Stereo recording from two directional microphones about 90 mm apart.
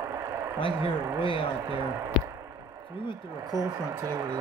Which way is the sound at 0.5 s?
75° left (ahead or behind).